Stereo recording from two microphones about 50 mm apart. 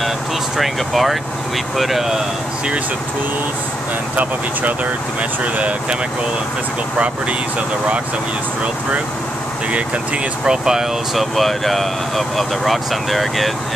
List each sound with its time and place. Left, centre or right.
0.6 s speech: centre
5.4 s speech: right
9.7 s speech: right
11.1 s speech: centre